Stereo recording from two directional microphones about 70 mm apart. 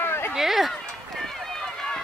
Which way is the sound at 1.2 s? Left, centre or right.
Centre.